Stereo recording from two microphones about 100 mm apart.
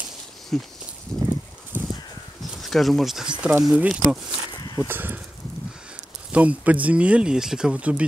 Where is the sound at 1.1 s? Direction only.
5° left (ahead or behind).